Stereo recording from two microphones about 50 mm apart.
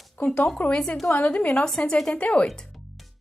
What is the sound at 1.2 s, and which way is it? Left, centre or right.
Speech, left.